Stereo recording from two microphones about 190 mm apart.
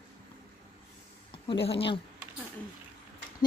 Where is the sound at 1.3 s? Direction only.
30° left (ahead or behind).